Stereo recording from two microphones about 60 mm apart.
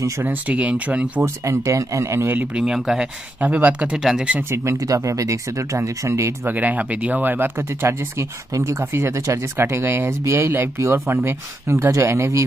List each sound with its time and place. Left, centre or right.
0.2 s speech: right
1.2 s speech: right
2.5 s speech: centre
3.3 s speech: right
3.9 s speech: centre
4.4 s speech: right
4.7 s speech: right
6.4 s speech: right
8.5 s speech: right